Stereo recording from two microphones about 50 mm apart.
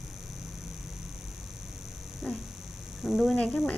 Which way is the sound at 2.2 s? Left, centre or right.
Centre.